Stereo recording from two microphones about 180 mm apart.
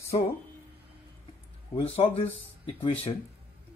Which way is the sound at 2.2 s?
30° left (ahead or behind).